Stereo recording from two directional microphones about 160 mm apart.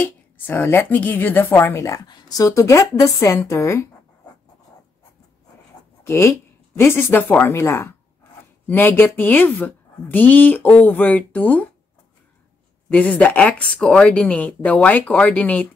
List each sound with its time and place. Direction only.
0.0 s a woman's voice: 10° left (ahead or behind)
6.0 s speech: 15° left (ahead or behind)
12.9 s a woman's voice: 10° left (ahead or behind)